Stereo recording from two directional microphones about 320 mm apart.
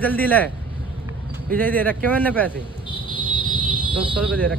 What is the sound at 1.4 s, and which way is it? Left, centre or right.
Speech, centre.